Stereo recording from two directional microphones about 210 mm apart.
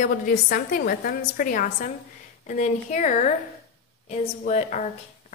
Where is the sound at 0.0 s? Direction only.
45° left (ahead or behind).